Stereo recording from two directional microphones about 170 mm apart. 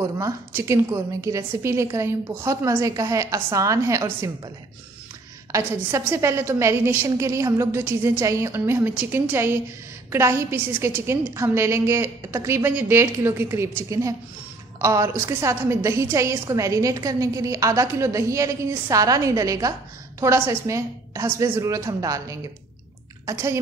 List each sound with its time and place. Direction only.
0.0 s a woman's voice: 20° right (ahead or behind)
5.5 s a woman's voice: 15° right (ahead or behind)